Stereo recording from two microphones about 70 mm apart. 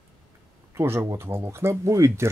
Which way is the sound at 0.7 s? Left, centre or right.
Right.